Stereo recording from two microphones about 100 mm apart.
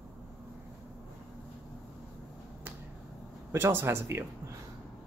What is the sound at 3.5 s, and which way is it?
Speech, 25° right (ahead or behind).